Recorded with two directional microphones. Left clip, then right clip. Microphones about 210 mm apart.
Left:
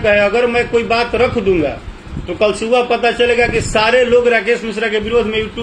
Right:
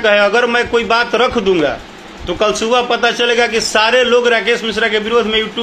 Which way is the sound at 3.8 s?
35° right (ahead or behind).